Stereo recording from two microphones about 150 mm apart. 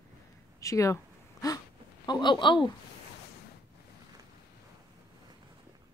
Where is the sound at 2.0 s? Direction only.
30° left (ahead or behind).